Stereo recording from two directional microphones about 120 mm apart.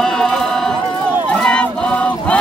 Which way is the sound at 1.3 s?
10° left (ahead or behind).